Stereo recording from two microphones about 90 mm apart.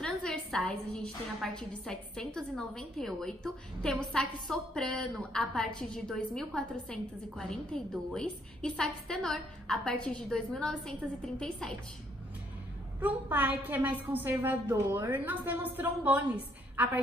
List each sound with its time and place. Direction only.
0.0 s a woman's voice: 10° left (ahead or behind)
13.0 s a woman's voice: 20° right (ahead or behind)